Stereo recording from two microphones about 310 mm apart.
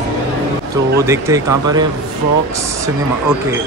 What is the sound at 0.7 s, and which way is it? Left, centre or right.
Speech, centre.